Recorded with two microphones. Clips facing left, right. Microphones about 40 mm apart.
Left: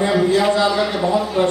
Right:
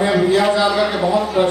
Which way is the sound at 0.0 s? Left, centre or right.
Centre.